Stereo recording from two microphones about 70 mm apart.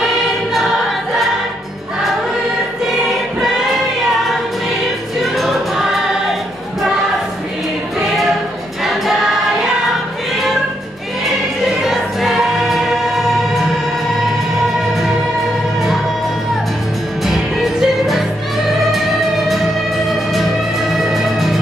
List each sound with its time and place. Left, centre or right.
0.0 s choir: centre
3.3 s choir: centre
5.2 s choir: centre
8.0 s music: centre
11.8 s choir: centre
17.2 s music: centre
21.0 s music: centre